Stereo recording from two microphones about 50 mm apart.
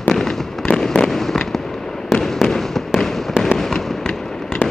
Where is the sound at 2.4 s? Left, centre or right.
Centre.